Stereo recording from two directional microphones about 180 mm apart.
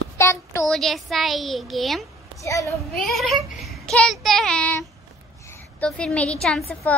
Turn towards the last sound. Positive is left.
turn(degrees=10)  # may be behind; listen again after turning